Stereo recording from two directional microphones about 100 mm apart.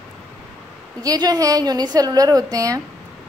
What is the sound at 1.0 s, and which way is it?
A woman's voice, 40° right (ahead or behind).